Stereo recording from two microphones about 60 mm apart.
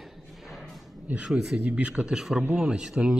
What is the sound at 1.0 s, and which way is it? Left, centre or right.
Speech, centre.